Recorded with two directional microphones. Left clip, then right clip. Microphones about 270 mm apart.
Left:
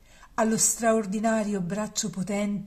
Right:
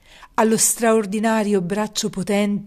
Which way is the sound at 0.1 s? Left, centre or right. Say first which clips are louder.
Right 8 dB; right.